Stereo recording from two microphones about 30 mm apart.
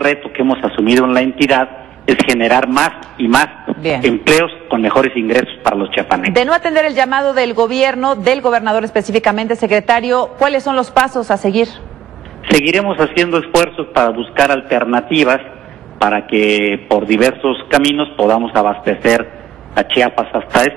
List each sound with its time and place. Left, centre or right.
0.2 s a man's voice: centre